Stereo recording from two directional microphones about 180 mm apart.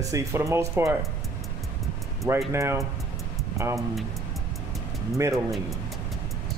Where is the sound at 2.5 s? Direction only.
15° right (ahead or behind).